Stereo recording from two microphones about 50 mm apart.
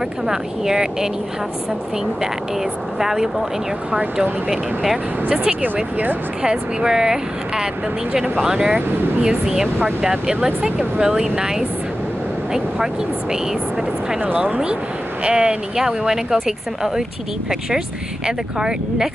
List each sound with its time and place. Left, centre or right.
0.3 s speech: centre
3.0 s speech: centre
4.5 s speech: centre
6.4 s speech: centre
14.2 s speech: right
15.2 s speech: centre